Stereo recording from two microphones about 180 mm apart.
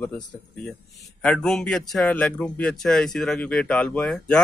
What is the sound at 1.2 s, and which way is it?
Speech, 5° left (ahead or behind).